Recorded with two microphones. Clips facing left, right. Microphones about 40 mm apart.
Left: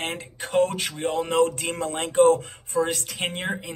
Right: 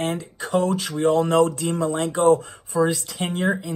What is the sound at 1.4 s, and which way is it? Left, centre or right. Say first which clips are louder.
Speech: right 3 dB; left.